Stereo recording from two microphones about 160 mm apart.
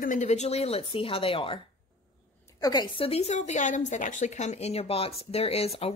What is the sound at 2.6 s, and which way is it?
A woman's voice, 25° left (ahead or behind).